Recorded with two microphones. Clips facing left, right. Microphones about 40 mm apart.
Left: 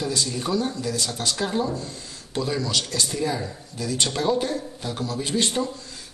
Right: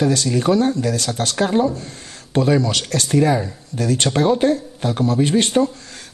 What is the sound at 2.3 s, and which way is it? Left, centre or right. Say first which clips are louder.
Speech: right 8 dB; right.